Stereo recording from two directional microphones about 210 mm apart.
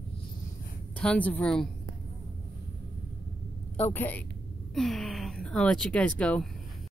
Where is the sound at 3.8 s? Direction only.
10° left (ahead or behind).